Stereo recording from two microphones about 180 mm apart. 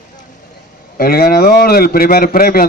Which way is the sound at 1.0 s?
55° left (ahead or behind).